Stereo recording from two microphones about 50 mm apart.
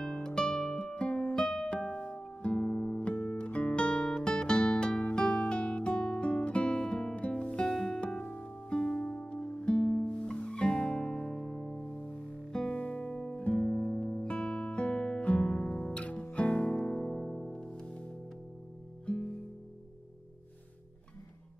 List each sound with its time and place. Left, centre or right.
0.2 s music: centre
1.3 s music: centre
2.4 s guitar: left
7.7 s music: centre
8.2 s music: left
13.4 s music: left
16.8 s music: centre
17.6 s music: centre